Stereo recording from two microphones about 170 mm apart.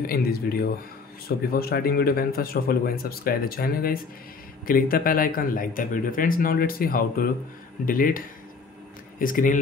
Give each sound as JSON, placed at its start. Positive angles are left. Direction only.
{"t": 0.0, "sound": "speech", "side_deg": 60}
{"t": 9.2, "sound": "speech", "side_deg": 50}